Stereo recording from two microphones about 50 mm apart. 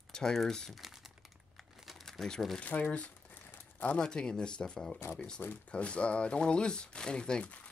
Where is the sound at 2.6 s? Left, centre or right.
Left.